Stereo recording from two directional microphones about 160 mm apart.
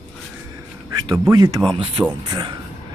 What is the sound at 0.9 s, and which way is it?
Speech, 25° right (ahead or behind).